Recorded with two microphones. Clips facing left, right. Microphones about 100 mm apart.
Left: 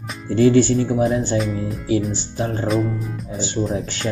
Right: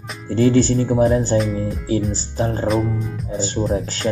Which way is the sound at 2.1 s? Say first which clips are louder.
Right 2 dB; 35° right (ahead or behind).